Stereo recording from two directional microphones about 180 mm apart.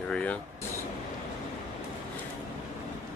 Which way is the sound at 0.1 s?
5° left (ahead or behind).